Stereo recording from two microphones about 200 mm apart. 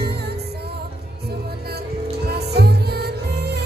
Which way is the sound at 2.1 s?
55° right (ahead or behind).